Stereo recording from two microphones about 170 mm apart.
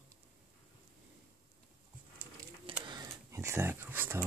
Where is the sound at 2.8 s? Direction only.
20° right (ahead or behind).